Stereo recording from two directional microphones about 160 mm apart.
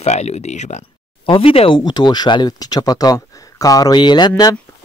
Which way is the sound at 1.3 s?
35° left (ahead or behind).